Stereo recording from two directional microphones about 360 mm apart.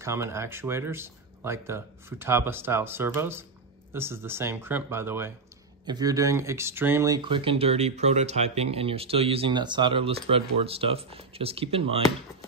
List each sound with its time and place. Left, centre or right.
0.0 s speech: centre